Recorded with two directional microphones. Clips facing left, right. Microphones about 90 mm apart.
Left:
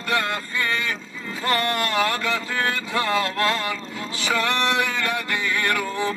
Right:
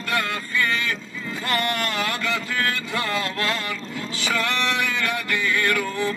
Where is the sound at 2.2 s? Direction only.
25° left (ahead or behind).